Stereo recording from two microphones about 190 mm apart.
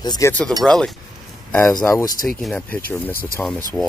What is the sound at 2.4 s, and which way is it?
Speech, 5° left (ahead or behind).